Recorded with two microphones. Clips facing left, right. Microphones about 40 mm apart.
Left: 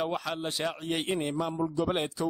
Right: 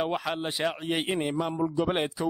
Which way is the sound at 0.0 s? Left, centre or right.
Centre.